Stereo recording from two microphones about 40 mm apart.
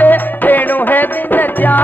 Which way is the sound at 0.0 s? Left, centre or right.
Left.